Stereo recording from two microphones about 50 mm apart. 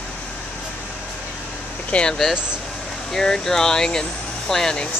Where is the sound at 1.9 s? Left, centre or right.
Centre.